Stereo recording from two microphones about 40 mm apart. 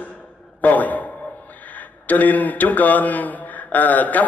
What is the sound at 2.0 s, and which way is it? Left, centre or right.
Speech, left.